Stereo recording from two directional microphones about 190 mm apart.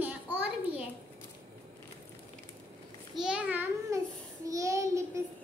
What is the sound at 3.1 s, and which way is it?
A child's voice, 5° right (ahead or behind).